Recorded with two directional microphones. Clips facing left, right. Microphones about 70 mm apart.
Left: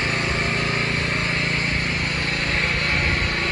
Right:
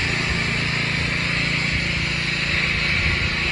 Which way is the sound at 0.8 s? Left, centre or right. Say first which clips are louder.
Left 1 dB; left.